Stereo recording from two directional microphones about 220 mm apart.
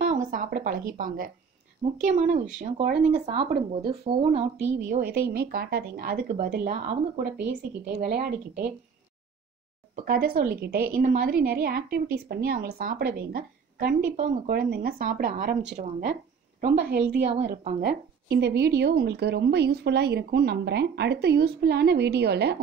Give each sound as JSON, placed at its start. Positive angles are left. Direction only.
{"t": 0.0, "sound": "a woman's voice", "side_deg": -35}
{"t": 3.8, "sound": "a woman's voice", "side_deg": -45}
{"t": 9.9, "sound": "a woman's voice", "side_deg": -40}
{"t": 14.1, "sound": "a woman's voice", "side_deg": -30}